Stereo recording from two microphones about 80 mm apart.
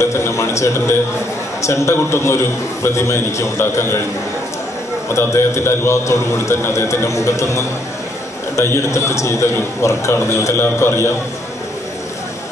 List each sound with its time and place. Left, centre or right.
0.0 s a man's voice: left
5.1 s a man's voice: left